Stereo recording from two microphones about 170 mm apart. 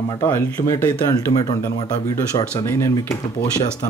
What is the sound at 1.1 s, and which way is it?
Speech, 20° left (ahead or behind).